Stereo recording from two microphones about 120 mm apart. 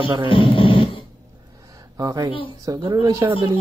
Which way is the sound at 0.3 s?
45° left (ahead or behind).